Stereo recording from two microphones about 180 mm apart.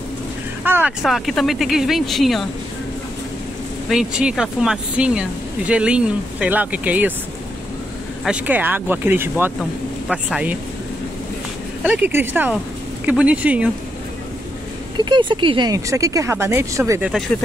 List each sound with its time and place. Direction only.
0.7 s speech: 10° right (ahead or behind)
3.9 s speech: 5° right (ahead or behind)
8.2 s speech: 5° right (ahead or behind)
9.6 s speech: centre (ahead or behind)
11.8 s speech: 10° right (ahead or behind)
15.0 s speech: 25° right (ahead or behind)